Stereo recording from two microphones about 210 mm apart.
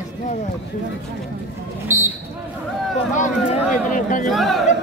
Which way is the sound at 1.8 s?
10° right (ahead or behind).